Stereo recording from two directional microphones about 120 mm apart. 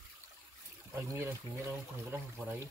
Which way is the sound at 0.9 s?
20° right (ahead or behind).